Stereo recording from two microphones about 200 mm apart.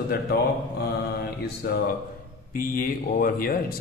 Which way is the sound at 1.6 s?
50° left (ahead or behind).